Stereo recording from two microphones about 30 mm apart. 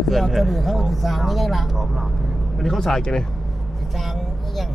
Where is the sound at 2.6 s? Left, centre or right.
Centre.